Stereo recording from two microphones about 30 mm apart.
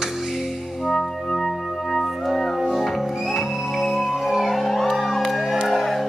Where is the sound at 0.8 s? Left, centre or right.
Centre.